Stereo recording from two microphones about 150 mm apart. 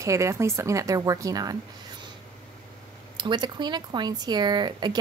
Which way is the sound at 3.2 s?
30° right (ahead or behind).